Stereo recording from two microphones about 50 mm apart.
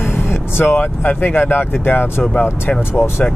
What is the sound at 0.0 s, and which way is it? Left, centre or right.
Vehicle, left.